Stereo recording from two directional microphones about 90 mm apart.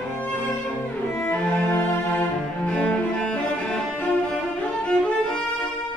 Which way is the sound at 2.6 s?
10° left (ahead or behind).